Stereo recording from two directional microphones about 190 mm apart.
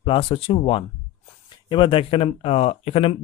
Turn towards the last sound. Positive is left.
turn(degrees=30)  # may be behind; listen again after turning